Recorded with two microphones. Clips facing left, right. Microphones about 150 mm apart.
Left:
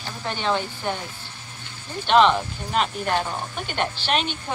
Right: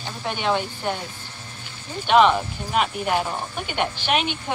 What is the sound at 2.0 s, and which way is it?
Speech, 10° right (ahead or behind).